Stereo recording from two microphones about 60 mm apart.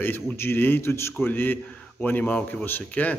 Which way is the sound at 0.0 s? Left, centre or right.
Left.